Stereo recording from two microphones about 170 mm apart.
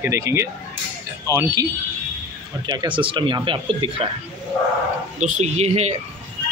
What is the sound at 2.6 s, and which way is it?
Speech, 25° right (ahead or behind).